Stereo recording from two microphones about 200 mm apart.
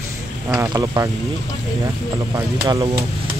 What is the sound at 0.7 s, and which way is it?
Speech, 20° right (ahead or behind).